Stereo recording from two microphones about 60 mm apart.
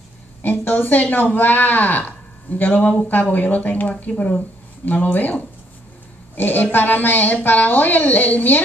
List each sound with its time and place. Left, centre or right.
0.4 s speech: left